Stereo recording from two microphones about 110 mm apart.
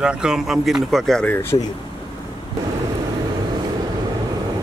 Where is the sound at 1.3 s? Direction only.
20° left (ahead or behind).